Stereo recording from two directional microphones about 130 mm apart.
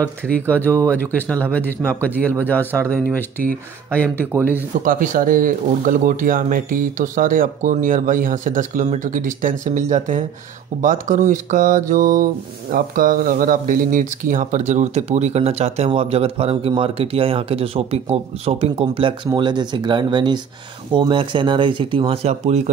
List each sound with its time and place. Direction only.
0.0 s speech: 10° left (ahead or behind)
4.8 s speech: 90° right; by 22.6 s 55° right (ahead or behind)